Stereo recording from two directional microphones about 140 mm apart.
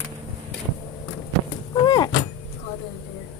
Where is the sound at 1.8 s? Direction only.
30° left (ahead or behind).